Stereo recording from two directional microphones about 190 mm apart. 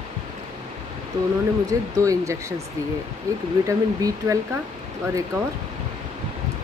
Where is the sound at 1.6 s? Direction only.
15° right (ahead or behind).